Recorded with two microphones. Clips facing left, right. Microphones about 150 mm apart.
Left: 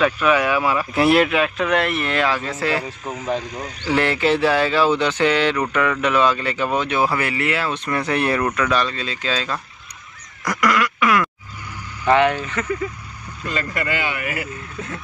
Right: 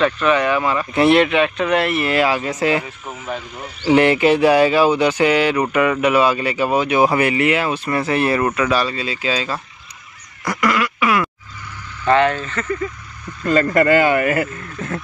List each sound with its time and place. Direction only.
0.0 s speech: 5° left (ahead or behind); by 2.8 s 15° right (ahead or behind)
3.2 s speech: 35° left (ahead or behind)
3.8 s speech: 20° right (ahead or behind)
7.7 s speech: 5° right (ahead or behind)
10.4 s quack: centre (ahead or behind)
12.0 s speech: 15° left (ahead or behind)
13.5 s speech: 45° right (ahead or behind)